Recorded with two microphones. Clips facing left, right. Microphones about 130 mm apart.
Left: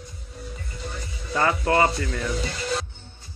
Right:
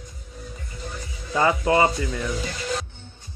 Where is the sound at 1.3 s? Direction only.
15° right (ahead or behind).